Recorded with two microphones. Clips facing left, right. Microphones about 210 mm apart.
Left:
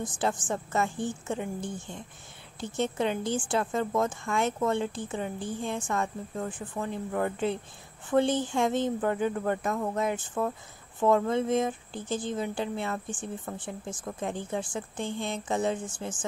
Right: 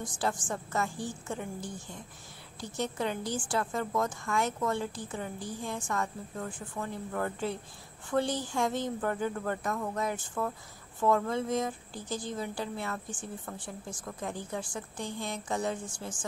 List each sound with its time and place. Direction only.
0.2 s a woman's voice: 20° left (ahead or behind)